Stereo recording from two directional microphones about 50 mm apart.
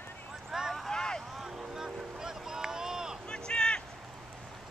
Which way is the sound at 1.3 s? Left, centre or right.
Centre.